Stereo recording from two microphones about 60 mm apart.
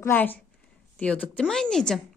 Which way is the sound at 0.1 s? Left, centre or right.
Left.